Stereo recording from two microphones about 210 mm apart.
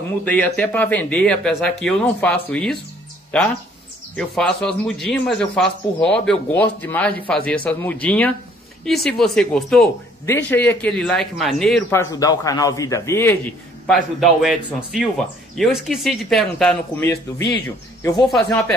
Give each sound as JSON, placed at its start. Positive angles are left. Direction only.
{"t": 0.2, "sound": "a man's voice", "side_deg": 10}
{"t": 4.2, "sound": "a man's voice", "side_deg": 5}
{"t": 13.8, "sound": "a man's voice", "side_deg": 0}